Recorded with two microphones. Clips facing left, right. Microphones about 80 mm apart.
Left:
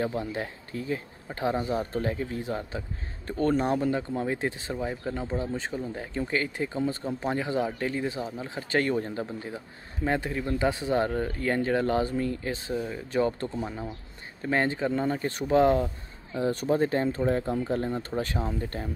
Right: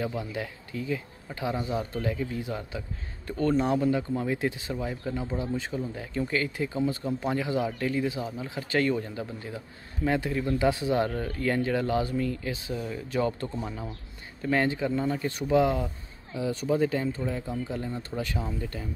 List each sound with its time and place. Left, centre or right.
0.0 s speech: left